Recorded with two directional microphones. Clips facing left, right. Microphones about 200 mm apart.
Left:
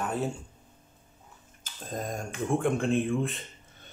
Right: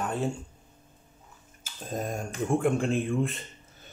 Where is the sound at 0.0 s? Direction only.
Centre (ahead or behind).